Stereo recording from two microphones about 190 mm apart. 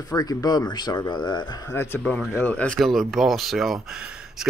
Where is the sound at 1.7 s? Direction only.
10° left (ahead or behind).